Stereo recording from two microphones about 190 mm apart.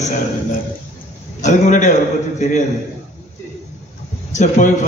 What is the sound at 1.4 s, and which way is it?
Speech, 40° left (ahead or behind).